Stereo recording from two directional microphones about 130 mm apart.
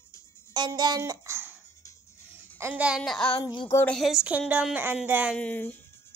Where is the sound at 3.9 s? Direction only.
Centre (ahead or behind).